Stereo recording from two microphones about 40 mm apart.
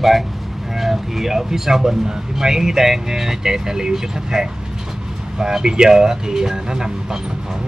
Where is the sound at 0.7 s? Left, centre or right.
Centre.